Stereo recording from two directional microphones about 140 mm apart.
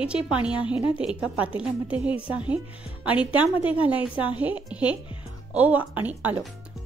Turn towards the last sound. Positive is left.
turn(degrees=-10)  # may be behind; listen again after turning